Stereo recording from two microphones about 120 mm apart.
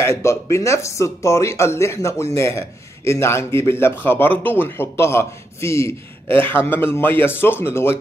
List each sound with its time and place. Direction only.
0.0 s speech: 25° left (ahead or behind)